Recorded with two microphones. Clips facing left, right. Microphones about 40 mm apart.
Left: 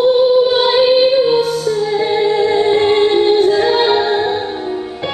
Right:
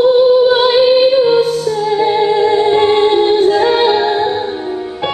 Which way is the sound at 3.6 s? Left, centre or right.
Centre.